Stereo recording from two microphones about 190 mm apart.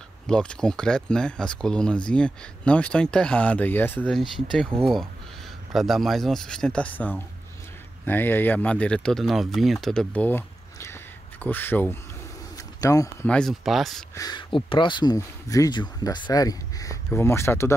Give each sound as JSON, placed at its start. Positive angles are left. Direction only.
{"t": 0.3, "sound": "speech", "side_deg": 5}
{"t": 5.7, "sound": "speech", "side_deg": 0}
{"t": 12.5, "sound": "bird", "side_deg": 20}
{"t": 13.3, "sound": "speech", "side_deg": 0}
{"t": 14.1, "sound": "speech", "side_deg": 20}